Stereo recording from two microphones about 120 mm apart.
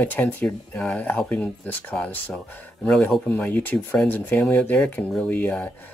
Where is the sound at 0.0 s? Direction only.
15° left (ahead or behind).